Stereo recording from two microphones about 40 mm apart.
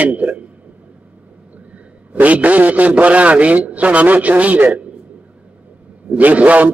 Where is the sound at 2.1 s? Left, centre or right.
Right.